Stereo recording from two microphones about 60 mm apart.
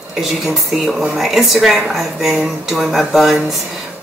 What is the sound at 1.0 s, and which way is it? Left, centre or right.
Speech, centre.